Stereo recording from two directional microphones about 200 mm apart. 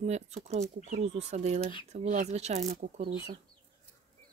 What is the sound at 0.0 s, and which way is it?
Speech, 35° right (ahead or behind).